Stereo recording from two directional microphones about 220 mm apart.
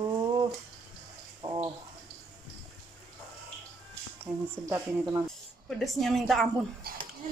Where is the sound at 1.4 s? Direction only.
20° right (ahead or behind).